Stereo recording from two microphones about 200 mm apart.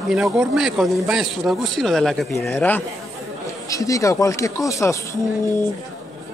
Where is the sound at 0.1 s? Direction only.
5° right (ahead or behind); by 4.9 s 15° left (ahead or behind).